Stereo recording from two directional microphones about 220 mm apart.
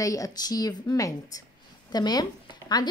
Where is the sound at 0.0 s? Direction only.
15° left (ahead or behind).